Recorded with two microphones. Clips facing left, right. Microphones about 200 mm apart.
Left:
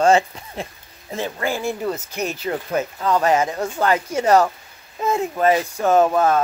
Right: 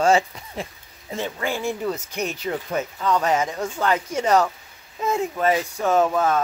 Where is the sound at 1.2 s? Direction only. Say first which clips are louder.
Left 3 dB; 35° left (ahead or behind).